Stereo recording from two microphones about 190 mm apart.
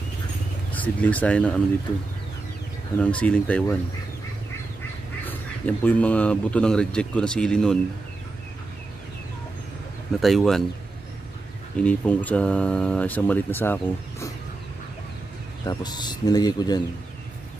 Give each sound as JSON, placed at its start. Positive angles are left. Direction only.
{"t": 0.7, "sound": "speech", "side_deg": 10}
{"t": 3.0, "sound": "speech", "side_deg": 5}
{"t": 5.2, "sound": "speech", "side_deg": 10}
{"t": 10.2, "sound": "speech", "side_deg": 0}
{"t": 11.8, "sound": "speech", "side_deg": 5}
{"t": 15.6, "sound": "speech", "side_deg": 20}